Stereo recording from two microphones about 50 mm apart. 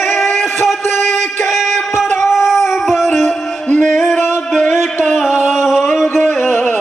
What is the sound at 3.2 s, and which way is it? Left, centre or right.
Music, centre.